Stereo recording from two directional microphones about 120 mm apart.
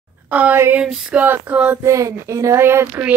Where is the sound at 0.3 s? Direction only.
15° right (ahead or behind).